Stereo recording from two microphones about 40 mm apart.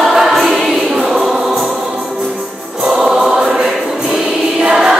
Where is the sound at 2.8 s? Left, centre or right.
Centre.